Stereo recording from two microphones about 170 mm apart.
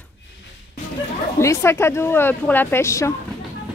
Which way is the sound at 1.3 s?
15° left (ahead or behind).